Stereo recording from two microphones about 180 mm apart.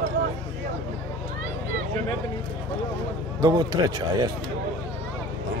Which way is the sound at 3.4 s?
20° right (ahead or behind).